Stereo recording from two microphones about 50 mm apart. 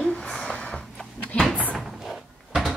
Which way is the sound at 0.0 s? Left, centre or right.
Centre.